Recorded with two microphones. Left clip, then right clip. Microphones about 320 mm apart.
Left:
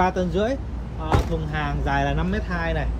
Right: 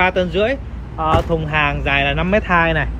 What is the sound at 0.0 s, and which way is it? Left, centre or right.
Speech, centre.